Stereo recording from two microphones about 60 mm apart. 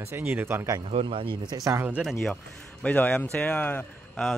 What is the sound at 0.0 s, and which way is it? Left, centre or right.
Speech, right.